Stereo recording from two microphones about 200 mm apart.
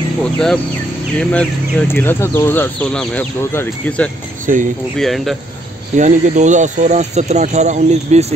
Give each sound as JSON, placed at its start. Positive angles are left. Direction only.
{"t": 0.2, "sound": "speech", "side_deg": 5}
{"t": 4.5, "sound": "speech", "side_deg": -45}
{"t": 4.9, "sound": "speech", "side_deg": 0}
{"t": 5.9, "sound": "speech", "side_deg": -35}